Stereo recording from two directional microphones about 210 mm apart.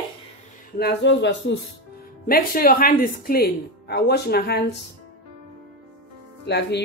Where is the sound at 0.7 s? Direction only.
55° left (ahead or behind).